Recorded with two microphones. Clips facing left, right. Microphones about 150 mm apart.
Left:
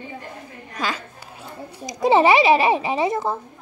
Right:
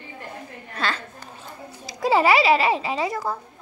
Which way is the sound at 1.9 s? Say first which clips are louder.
Left 3 dB; 20° left (ahead or behind).